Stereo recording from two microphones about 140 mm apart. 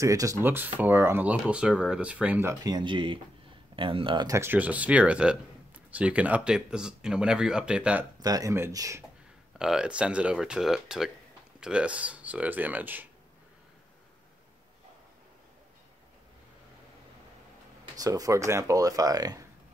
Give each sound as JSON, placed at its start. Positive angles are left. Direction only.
{"t": 0.0, "sound": "speech", "side_deg": -25}
{"t": 2.6, "sound": "speech", "side_deg": -30}
{"t": 4.3, "sound": "speech", "side_deg": -15}
{"t": 8.2, "sound": "speech", "side_deg": -25}
{"t": 9.6, "sound": "speech", "side_deg": -5}
{"t": 17.9, "sound": "speech", "side_deg": -25}